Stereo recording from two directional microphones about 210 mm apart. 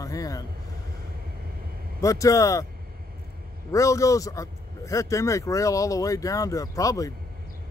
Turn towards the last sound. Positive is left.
turn(degrees=15)  # may be behind; listen again after turning